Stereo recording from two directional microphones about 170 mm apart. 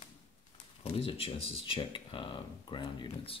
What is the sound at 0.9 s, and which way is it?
Speech, 30° left (ahead or behind).